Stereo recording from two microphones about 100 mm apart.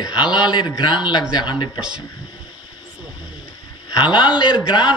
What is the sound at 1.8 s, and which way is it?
Speech, 10° right (ahead or behind).